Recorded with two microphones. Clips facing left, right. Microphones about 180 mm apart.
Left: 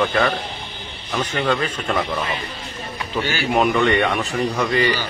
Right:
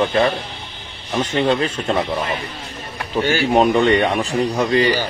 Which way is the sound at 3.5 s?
30° right (ahead or behind).